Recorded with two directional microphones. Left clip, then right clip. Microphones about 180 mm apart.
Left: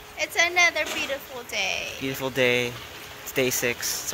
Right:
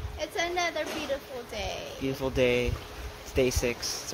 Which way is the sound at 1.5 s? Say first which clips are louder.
Left 9 dB; 20° right (ahead or behind).